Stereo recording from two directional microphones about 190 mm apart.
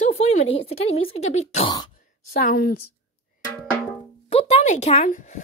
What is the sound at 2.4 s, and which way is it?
Speech, 50° left (ahead or behind).